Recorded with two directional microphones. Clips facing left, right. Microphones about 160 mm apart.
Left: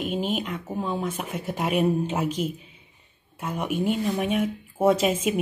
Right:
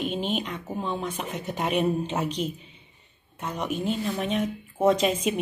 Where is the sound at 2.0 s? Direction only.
5° left (ahead or behind).